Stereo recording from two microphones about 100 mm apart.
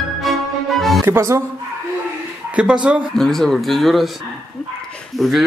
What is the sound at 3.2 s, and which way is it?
Speech, 5° left (ahead or behind).